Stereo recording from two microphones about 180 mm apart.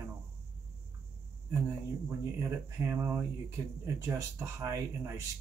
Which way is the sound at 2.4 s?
15° right (ahead or behind).